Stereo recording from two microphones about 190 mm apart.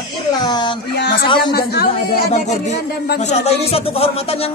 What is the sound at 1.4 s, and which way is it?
Speech, 55° left (ahead or behind).